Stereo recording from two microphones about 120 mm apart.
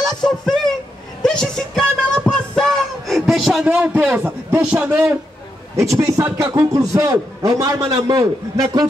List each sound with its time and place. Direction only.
0.0 s a sound: 5° left (ahead or behind)
3.6 s a man's voice: 15° right (ahead or behind)
5.8 s a man's voice: 25° right (ahead or behind)